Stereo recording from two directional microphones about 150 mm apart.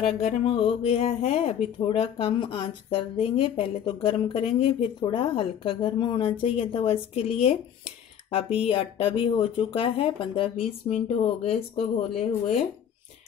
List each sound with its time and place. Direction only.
0.0 s speech: 45° left (ahead or behind)